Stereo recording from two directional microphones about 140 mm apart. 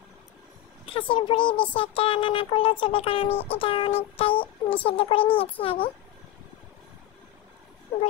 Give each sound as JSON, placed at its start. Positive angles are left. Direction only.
{"t": 0.8, "sound": "speech", "side_deg": 40}